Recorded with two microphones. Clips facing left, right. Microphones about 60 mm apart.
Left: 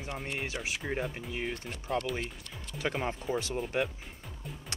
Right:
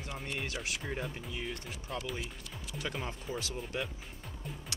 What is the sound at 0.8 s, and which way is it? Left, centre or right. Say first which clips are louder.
Speech: left 7 dB; centre.